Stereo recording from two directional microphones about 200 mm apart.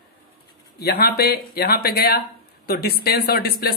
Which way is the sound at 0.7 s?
50° left (ahead or behind).